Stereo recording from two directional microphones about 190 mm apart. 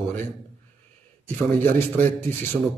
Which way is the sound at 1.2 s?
10° left (ahead or behind).